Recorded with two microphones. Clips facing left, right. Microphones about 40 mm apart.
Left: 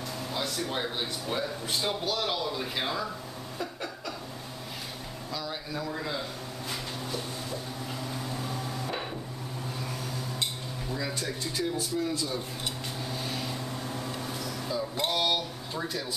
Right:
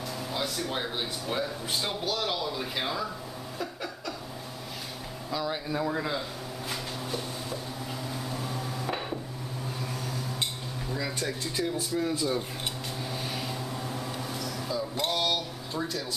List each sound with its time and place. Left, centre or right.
0.3 s speech: centre
5.3 s speech: centre
6.7 s a sound: centre
8.1 s microwave oven: centre
10.9 s speech: centre
12.1 s speech: centre
13.1 s a sound: centre